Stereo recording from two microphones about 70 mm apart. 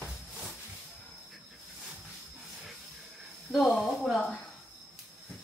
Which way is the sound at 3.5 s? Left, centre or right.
Centre.